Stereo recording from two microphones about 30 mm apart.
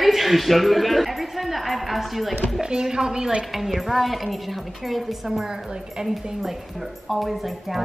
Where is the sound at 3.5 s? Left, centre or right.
Centre.